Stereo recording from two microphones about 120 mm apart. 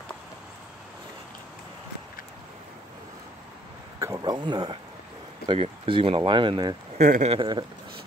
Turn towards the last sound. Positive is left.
turn(degrees=-40)  # may be behind; listen again after turning